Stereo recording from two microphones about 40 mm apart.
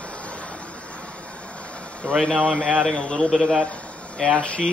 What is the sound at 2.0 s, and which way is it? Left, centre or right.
Speech, left.